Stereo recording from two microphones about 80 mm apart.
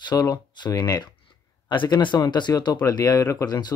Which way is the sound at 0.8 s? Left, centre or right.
Left.